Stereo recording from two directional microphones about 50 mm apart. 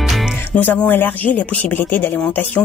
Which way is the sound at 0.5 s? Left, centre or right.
Left.